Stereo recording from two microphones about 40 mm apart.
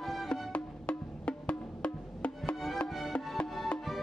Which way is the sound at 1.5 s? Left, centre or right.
Left.